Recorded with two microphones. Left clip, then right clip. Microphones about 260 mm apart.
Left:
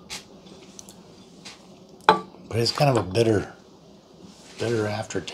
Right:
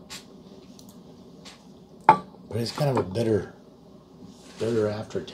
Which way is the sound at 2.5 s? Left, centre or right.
Left.